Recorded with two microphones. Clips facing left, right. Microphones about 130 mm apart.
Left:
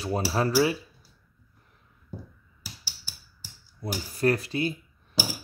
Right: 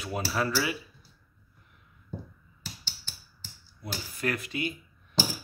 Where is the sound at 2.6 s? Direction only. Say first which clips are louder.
Right 1 dB; 10° left (ahead or behind).